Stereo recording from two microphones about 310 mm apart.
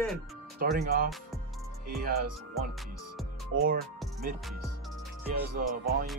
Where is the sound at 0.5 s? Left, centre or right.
Right.